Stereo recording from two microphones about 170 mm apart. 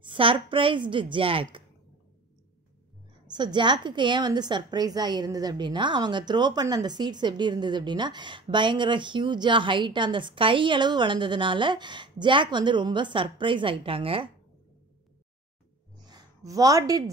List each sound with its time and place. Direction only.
0.0 s a woman's voice: 30° right (ahead or behind)
3.3 s a woman's voice: 25° right (ahead or behind)
16.1 s a sound: 20° right (ahead or behind)